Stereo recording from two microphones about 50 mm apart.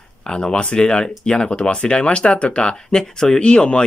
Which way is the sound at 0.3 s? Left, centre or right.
Centre.